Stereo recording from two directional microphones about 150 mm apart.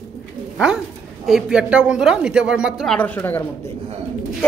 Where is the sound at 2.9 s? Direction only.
10° left (ahead or behind).